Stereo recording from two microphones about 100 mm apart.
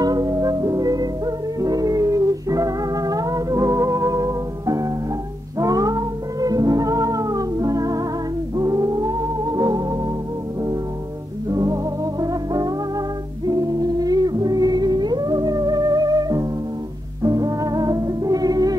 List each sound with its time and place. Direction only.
0.0 s music: 40° right (ahead or behind)
11.5 s music: 35° right (ahead or behind)